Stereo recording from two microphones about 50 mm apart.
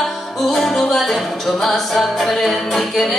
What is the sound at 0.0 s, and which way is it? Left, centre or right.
Music, centre.